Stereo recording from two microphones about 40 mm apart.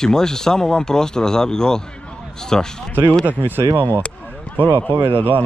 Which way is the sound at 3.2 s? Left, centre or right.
Right.